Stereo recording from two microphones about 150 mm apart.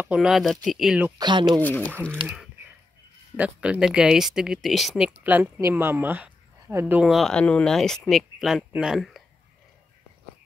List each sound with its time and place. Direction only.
0.0 s speech: 5° right (ahead or behind)
1.1 s speech: 30° right (ahead or behind)
1.6 s speech: 10° left (ahead or behind)
3.3 s speech: 10° right (ahead or behind)
7.0 s speech: centre (ahead or behind)